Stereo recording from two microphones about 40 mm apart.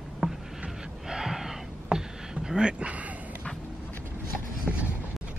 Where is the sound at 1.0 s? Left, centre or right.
Centre.